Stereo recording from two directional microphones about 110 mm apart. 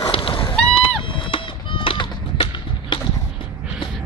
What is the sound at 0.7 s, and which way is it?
Run, 55° left (ahead or behind).